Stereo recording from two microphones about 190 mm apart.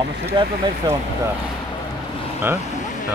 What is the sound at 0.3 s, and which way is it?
Speech, 25° right (ahead or behind).